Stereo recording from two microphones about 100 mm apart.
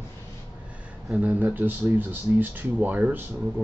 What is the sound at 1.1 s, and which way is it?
Speech, 15° right (ahead or behind).